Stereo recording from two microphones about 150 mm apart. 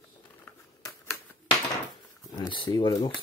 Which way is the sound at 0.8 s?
20° left (ahead or behind).